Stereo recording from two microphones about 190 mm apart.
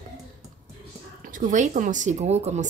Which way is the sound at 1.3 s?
45° right (ahead or behind).